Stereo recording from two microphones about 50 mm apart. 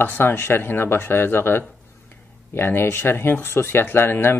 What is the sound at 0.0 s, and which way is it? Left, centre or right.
Speech, left.